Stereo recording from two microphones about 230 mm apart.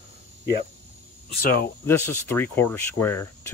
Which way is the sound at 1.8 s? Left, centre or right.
Centre.